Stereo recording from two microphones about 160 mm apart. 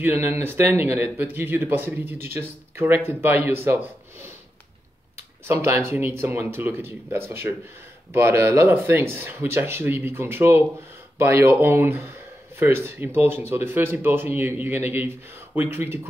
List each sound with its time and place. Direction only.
0.0 s speech: 15° right (ahead or behind)
5.5 s speech: 15° right (ahead or behind)